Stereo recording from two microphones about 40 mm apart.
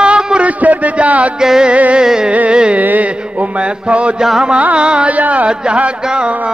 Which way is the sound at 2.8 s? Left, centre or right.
Right.